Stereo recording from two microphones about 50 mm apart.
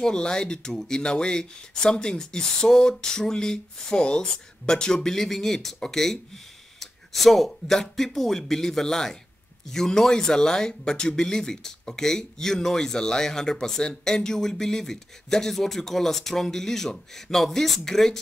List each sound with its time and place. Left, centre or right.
0.0 s speech: centre